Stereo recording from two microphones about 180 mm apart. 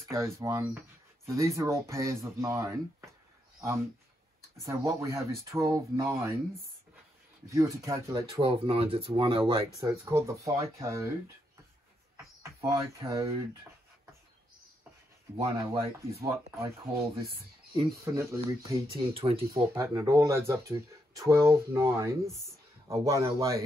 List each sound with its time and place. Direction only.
0.1 s speech: 15° right (ahead or behind)
4.6 s speech: 15° right (ahead or behind)
7.4 s speech: 15° right (ahead or behind)
9.8 s speech: 15° right (ahead or behind)
12.5 s speech: 20° right (ahead or behind)
15.3 s speech: 20° right (ahead or behind)
18.1 s speech: 15° right (ahead or behind)
18.9 s speech: 30° right (ahead or behind)
19.5 s speech: 20° right (ahead or behind)